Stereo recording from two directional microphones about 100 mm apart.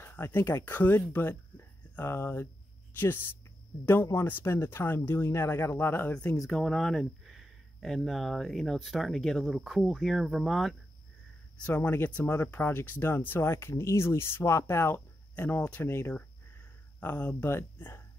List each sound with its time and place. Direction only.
0.0 s speech: 20° left (ahead or behind)
3.8 s speech: 25° left (ahead or behind)
6.4 s speech: 5° left (ahead or behind)
11.6 s speech: 15° left (ahead or behind)